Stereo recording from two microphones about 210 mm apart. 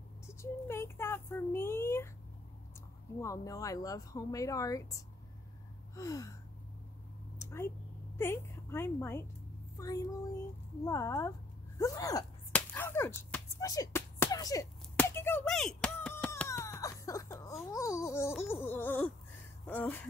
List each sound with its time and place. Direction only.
0.3 s speech: 10° left (ahead or behind)
3.2 s speech: 15° left (ahead or behind)
7.3 s a sound: 15° left (ahead or behind)
8.2 s a woman's voice: 10° left (ahead or behind)
9.8 s child singing: 15° left (ahead or behind)
10.9 s speech: 15° left (ahead or behind)
12.5 s a sound: 10° left (ahead or behind)
18.4 s speech: 10° left (ahead or behind)